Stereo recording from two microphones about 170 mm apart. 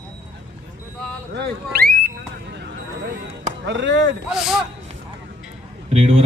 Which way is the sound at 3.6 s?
90° right.